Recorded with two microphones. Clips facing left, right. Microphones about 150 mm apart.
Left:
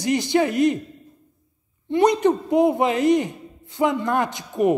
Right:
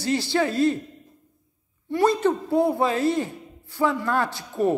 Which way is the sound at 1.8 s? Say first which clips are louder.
Left 3 dB; 20° left (ahead or behind).